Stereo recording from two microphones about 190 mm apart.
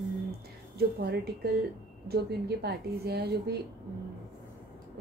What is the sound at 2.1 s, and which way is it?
A woman's voice, 60° right (ahead or behind).